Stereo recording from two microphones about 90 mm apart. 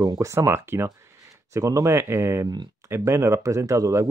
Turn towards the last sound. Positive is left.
turn(degrees=-35)  # may be behind; listen again after turning